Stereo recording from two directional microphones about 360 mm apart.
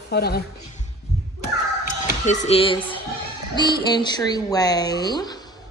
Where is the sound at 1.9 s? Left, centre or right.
Centre.